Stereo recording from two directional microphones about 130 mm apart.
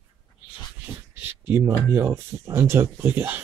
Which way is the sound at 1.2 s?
15° right (ahead or behind).